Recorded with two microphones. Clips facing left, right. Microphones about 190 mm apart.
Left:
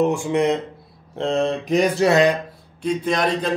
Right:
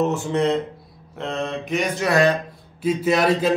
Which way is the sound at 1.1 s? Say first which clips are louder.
Left 6 dB; 30° left (ahead or behind).